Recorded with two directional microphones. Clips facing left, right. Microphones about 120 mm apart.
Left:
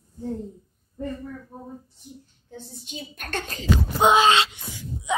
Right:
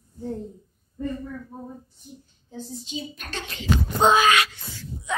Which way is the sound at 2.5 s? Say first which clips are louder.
Right 5 dB; 55° left (ahead or behind).